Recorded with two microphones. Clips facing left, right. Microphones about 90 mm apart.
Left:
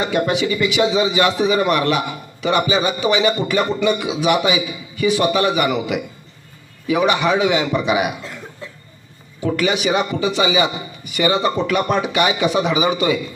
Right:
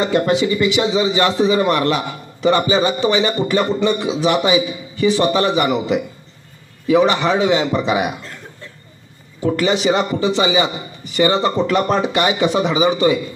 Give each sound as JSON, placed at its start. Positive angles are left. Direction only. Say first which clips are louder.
{"t": 0.4, "sound": "a man's voice", "louder": "right 1 dB", "side_deg": -25}
{"t": 9.4, "sound": "a man's voice", "louder": "right 2 dB", "side_deg": -30}